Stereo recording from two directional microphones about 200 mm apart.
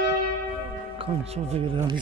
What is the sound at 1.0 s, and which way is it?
Speech, 30° right (ahead or behind).